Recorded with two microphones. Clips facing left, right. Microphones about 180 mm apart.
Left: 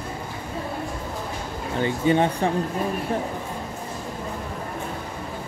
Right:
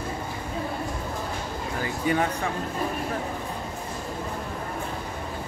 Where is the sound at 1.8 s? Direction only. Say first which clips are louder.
Left 5 dB; 25° left (ahead or behind).